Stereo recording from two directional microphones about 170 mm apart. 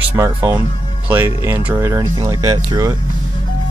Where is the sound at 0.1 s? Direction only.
15° right (ahead or behind).